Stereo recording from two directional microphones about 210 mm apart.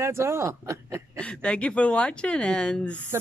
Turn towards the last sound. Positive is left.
turn(degrees=5)  # may be behind; listen again after turning